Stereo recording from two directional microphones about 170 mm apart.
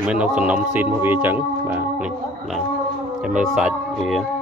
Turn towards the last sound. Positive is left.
turn(degrees=0)  # may be behind; listen again after turning